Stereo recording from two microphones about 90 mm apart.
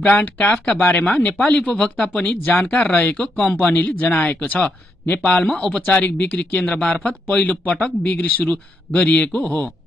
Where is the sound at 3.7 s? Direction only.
20° left (ahead or behind).